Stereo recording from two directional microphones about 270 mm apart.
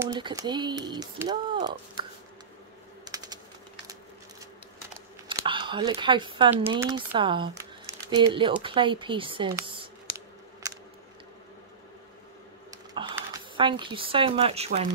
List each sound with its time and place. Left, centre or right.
0.0 s speech: centre
5.4 s speech: centre
9.7 s scissors: centre
12.7 s a sound: centre